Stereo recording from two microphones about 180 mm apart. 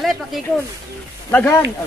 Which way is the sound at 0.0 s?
Centre (ahead or behind).